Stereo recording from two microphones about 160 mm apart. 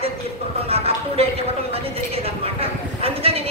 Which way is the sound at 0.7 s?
40° right (ahead or behind).